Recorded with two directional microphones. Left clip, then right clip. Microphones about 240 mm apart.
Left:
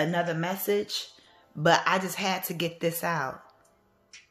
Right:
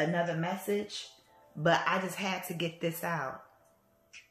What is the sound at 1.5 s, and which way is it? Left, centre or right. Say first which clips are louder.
Speech: left 5 dB; left.